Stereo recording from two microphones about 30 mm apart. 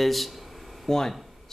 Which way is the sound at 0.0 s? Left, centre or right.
Centre.